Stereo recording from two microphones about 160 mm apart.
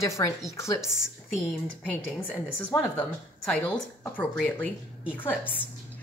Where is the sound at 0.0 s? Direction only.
20° left (ahead or behind).